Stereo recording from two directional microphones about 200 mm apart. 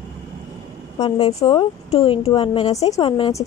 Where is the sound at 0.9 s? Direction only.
25° left (ahead or behind).